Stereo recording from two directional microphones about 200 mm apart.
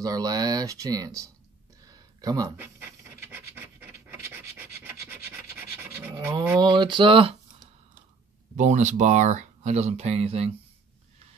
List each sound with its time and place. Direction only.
0.0 s speech: 20° right (ahead or behind)
1.9 s a sound: 20° right (ahead or behind)
5.3 s scratch: 10° right (ahead or behind)
8.5 s speech: 35° right (ahead or behind)